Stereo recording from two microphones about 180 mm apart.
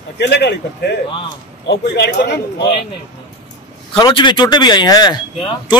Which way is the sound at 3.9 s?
25° left (ahead or behind).